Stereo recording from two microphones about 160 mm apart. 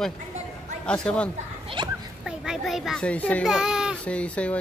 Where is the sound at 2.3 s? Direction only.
Centre (ahead or behind).